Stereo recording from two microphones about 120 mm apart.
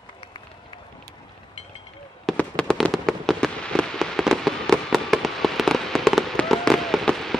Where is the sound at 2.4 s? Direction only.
10° left (ahead or behind).